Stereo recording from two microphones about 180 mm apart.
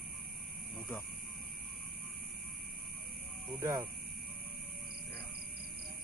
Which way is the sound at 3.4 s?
15° right (ahead or behind).